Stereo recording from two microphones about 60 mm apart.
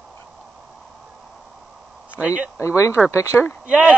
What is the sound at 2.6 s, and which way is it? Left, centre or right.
Speech, left.